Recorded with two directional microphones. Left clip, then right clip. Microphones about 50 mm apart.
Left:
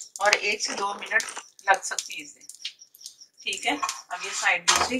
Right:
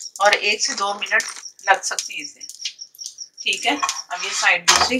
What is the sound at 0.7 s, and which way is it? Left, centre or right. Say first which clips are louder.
Speech: right 7 dB; centre.